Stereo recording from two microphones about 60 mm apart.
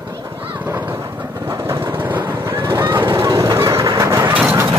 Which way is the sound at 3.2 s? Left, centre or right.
Right.